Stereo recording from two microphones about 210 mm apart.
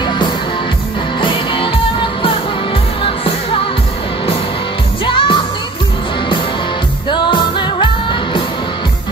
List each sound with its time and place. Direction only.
1.2 s music: 25° left (ahead or behind)
3.0 s music: 25° left (ahead or behind)
5.0 s music: 25° left (ahead or behind)
7.1 s music: 25° left (ahead or behind)